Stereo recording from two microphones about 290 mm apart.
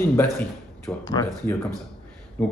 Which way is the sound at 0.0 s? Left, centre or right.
Centre.